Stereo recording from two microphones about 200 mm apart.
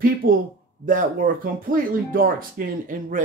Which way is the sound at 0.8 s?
40° right (ahead or behind).